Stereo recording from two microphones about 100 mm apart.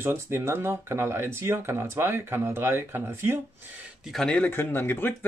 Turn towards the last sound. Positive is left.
turn(degrees=20)  # may be behind; listen again after turning